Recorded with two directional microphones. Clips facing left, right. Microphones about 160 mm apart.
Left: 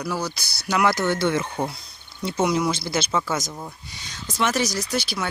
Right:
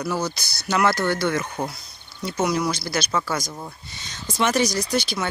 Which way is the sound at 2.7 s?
25° left (ahead or behind).